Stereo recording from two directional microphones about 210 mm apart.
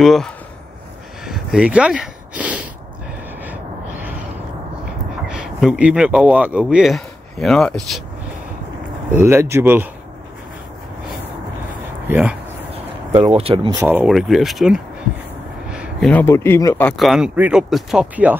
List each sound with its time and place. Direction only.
0.0 s speech: centre (ahead or behind)
1.2 s a sound: centre (ahead or behind)
5.3 s speech: 5° right (ahead or behind)
9.2 s speech: 10° right (ahead or behind)
12.1 s speech: 5° right (ahead or behind)
12.7 s speech: 30° right (ahead or behind)
13.8 s speech: 5° right (ahead or behind)
15.7 s a sound: 5° right (ahead or behind)
16.1 s speech: 10° left (ahead or behind)
16.9 s speech: centre (ahead or behind)